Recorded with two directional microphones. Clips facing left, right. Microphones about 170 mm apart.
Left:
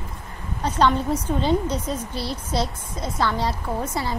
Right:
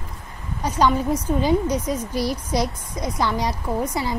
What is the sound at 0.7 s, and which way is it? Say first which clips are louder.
A woman's voice: right 1 dB; 10° right (ahead or behind).